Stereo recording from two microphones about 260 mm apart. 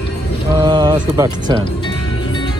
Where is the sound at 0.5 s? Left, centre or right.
Centre.